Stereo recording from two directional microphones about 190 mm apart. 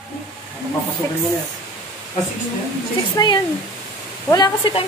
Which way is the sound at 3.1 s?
20° left (ahead or behind).